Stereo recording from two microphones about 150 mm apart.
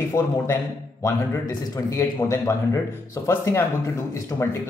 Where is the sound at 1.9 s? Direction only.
20° left (ahead or behind).